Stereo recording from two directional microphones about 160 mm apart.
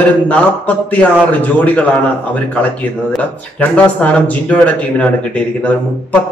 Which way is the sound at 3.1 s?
10° left (ahead or behind).